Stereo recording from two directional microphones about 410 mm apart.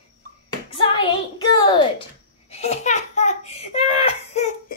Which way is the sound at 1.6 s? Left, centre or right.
Centre.